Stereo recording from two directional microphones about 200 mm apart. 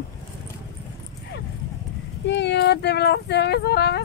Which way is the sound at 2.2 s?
60° left (ahead or behind).